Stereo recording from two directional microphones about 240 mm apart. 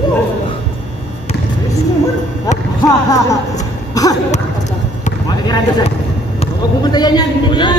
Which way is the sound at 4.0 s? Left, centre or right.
Centre.